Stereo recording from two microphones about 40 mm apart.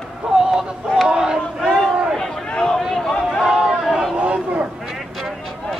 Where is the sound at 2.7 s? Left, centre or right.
Centre.